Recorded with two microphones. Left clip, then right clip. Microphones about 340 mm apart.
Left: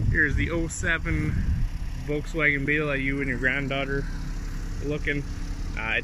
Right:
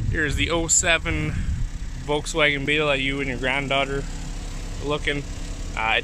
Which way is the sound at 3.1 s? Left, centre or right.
Right.